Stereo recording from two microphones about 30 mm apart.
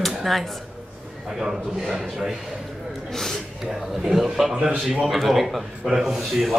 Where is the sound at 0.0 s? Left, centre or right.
Centre.